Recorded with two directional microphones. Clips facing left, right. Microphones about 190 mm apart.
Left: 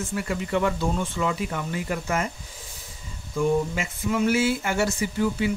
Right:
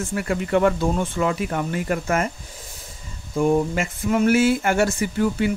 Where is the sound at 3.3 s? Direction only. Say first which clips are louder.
Right 4 dB; 50° right (ahead or behind).